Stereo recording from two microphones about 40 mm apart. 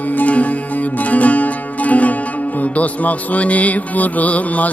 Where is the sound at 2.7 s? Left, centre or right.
Left.